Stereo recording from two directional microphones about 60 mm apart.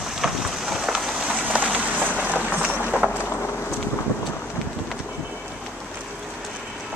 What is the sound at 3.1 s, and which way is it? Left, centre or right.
Boat, left.